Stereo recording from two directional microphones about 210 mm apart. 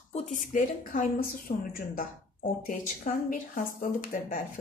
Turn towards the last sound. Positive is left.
turn(degrees=40)  # may be behind; listen again after turning